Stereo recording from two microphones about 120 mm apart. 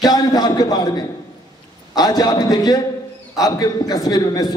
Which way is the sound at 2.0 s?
35° left (ahead or behind).